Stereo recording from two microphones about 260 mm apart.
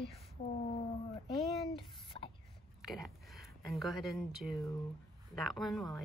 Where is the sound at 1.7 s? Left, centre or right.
Centre.